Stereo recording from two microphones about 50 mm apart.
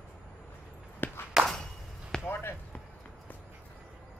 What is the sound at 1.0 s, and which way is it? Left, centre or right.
Walk, left.